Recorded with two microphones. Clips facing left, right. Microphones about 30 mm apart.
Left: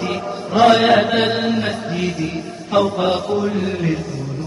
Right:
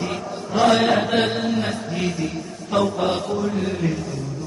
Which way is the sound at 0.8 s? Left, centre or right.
Left.